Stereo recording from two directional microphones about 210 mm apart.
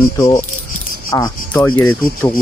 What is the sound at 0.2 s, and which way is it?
Speech, 15° left (ahead or behind).